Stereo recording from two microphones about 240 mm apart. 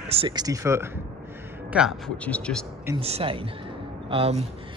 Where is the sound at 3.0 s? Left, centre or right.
Right.